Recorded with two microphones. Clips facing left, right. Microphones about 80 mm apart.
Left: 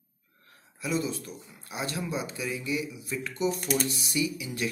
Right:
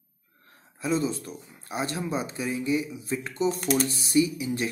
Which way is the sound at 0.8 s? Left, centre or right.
Right.